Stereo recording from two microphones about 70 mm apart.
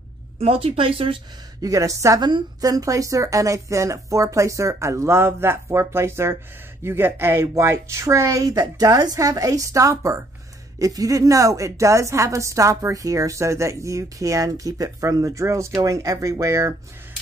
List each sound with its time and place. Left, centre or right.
1.6 s a woman's voice: right
2.1 s a woman's voice: right
8.5 s a woman's voice: right